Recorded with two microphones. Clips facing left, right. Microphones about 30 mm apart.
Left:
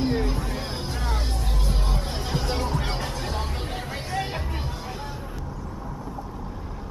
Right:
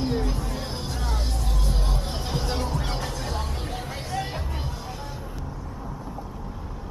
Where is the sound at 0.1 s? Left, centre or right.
Centre.